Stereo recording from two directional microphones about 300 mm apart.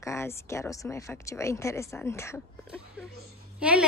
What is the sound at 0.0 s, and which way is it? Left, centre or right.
Speech, centre.